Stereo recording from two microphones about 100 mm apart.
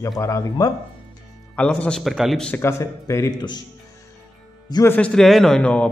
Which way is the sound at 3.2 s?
45° left (ahead or behind).